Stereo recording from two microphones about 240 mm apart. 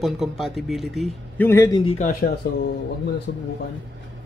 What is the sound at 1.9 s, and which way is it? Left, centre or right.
Speech, left.